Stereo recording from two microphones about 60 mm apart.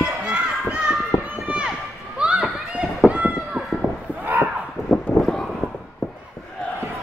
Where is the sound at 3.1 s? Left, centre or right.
Right.